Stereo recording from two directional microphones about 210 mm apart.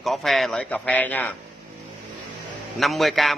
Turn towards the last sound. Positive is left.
turn(degrees=0)  # may be behind; listen again after turning